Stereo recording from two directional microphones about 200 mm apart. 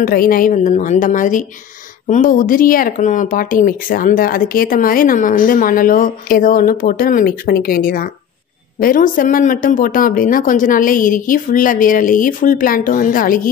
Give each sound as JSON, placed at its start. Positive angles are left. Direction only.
{"t": 0.0, "sound": "a woman's voice", "side_deg": 45}